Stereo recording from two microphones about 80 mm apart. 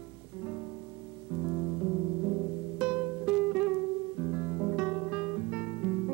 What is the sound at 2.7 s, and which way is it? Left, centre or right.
Music, centre.